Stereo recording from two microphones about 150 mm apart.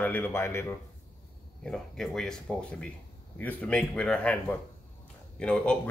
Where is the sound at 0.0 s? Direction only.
15° left (ahead or behind).